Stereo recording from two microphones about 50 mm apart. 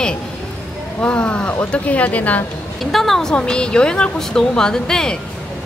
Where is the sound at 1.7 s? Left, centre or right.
Left.